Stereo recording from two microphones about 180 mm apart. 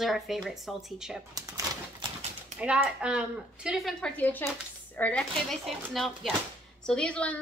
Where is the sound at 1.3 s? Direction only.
20° right (ahead or behind).